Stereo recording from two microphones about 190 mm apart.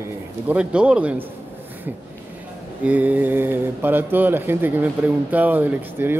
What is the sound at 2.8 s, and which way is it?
Speech, 10° right (ahead or behind).